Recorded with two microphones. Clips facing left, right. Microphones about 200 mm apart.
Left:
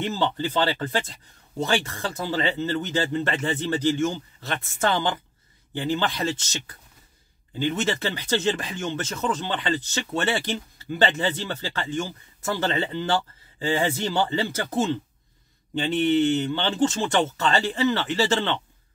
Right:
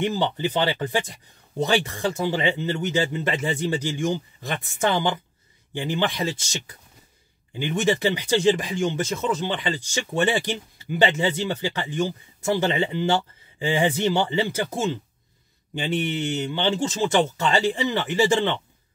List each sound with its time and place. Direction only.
0.0 s speech: 15° right (ahead or behind)
16.3 s speech: 10° right (ahead or behind)